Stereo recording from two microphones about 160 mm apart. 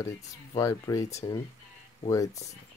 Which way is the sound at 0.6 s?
20° left (ahead or behind).